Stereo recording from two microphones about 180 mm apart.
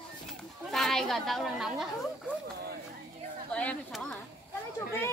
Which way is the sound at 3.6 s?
5° left (ahead or behind).